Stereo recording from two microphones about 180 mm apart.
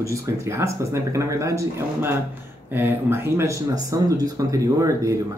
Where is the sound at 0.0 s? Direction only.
15° right (ahead or behind).